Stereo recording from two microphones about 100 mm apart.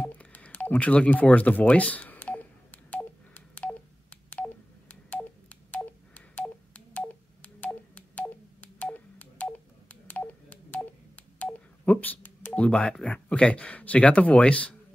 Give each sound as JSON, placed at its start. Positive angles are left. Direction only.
{"t": 0.0, "sound": "telephone dialing", "side_deg": 15}
{"t": 11.8, "sound": "speech", "side_deg": 15}